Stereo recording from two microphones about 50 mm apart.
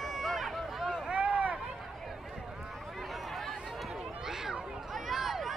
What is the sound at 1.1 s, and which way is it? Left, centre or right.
Run, right.